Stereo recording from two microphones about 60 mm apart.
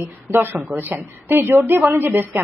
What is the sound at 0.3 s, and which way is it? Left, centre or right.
A woman's voice, right.